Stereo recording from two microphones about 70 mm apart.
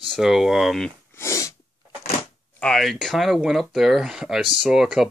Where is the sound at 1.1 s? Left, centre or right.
Left.